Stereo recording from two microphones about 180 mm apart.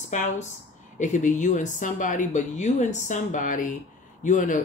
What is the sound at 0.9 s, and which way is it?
Speech, 45° left (ahead or behind).